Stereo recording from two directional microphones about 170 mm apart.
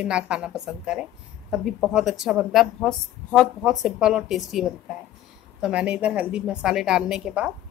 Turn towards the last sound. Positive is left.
turn(degrees=-5)  # may be behind; listen again after turning